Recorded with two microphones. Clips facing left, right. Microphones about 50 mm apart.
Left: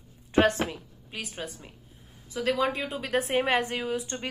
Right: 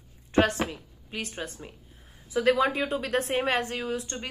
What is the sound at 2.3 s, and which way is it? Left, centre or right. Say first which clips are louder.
Speech: right 4 dB; centre.